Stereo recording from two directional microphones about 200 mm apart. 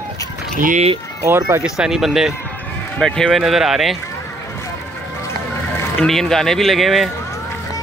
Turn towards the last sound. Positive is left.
turn(degrees=0)  # may be behind; listen again after turning